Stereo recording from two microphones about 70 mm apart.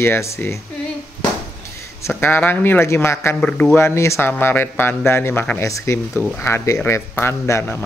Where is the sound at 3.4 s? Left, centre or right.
Centre.